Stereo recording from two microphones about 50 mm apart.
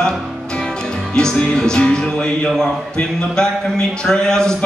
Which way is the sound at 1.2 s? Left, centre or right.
Centre.